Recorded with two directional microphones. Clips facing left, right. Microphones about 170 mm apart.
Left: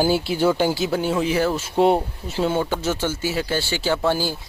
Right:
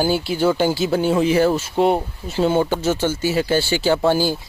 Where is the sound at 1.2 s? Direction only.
Centre (ahead or behind).